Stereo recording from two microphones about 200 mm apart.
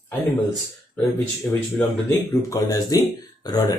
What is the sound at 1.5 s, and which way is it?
Speech, 10° left (ahead or behind).